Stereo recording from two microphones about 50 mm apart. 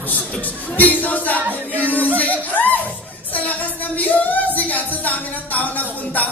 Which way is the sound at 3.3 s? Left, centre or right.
Left.